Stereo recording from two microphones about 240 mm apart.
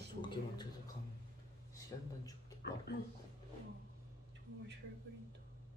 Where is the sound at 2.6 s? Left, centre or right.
Left.